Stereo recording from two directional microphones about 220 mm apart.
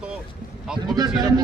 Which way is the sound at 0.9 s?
20° right (ahead or behind).